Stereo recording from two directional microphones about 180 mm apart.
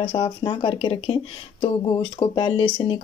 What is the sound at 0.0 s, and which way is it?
Speech, 30° left (ahead or behind).